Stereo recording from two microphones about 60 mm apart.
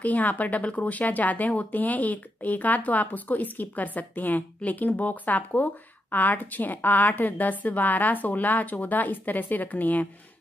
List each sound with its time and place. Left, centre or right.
0.0 s a woman's voice: left